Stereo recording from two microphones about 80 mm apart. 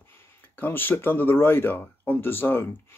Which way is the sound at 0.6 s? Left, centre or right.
Left.